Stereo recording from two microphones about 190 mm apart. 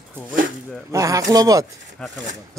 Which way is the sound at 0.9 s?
15° right (ahead or behind).